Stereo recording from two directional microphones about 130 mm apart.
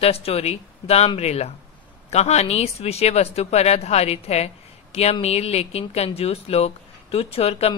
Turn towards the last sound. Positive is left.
turn(degrees=50)  # may be behind; listen again after turning